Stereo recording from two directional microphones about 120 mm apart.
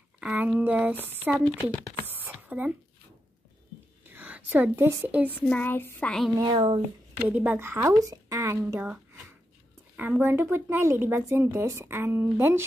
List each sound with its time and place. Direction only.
0.2 s a sound: 10° right (ahead or behind)
1.0 s speech: 15° right (ahead or behind)
1.3 s speech: 10° left (ahead or behind)
2.0 s a sound: 15° right (ahead or behind)
4.1 s a woman's voice: 15° right (ahead or behind)
5.4 s speech: 10° left (ahead or behind)
6.4 s speech: 45° right (ahead or behind)
7.2 s a woman's voice: 15° right (ahead or behind)
8.7 s a woman's voice: 10° right (ahead or behind)